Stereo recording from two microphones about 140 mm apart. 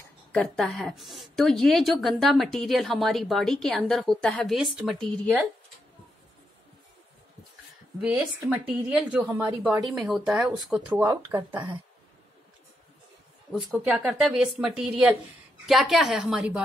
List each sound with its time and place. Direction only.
0.3 s a woman's voice: 5° left (ahead or behind)
8.0 s a woman's voice: 5° right (ahead or behind)
11.1 s speech: 20° right (ahead or behind)
13.7 s a woman's voice: 5° right (ahead or behind)